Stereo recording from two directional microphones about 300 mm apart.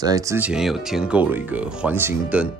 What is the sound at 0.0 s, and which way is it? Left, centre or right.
Speech, centre.